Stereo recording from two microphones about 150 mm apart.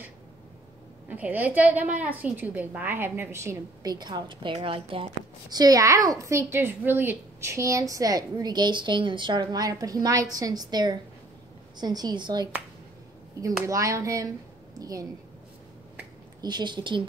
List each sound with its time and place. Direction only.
1.0 s a woman's voice: 10° right (ahead or behind); by 12.4 s 30° right (ahead or behind)
13.7 s a woman's voice: 20° right (ahead or behind)
16.3 s a woman's voice: 30° right (ahead or behind)